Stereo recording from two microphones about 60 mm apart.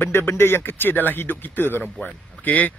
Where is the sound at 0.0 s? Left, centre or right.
Left.